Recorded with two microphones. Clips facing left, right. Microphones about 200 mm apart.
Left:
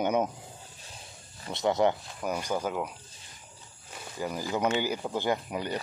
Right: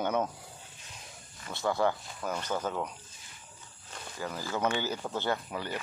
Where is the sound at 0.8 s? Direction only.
35° left (ahead or behind).